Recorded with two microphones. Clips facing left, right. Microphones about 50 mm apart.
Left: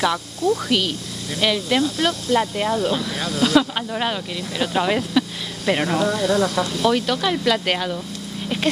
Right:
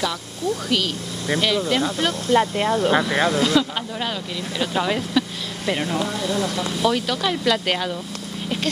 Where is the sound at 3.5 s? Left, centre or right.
Left.